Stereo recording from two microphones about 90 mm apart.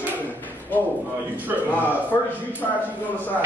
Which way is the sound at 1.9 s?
20° left (ahead or behind).